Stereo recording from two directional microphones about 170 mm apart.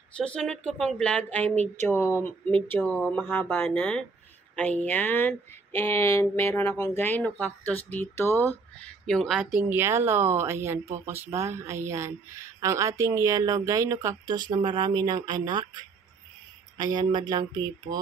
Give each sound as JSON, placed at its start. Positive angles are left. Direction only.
{"t": 0.2, "sound": "speech", "side_deg": 5}
{"t": 9.6, "sound": "speech", "side_deg": -10}